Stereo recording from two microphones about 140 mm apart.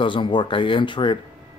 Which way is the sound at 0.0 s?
35° left (ahead or behind).